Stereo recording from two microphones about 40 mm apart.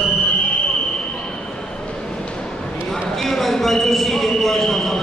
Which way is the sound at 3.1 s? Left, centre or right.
Centre.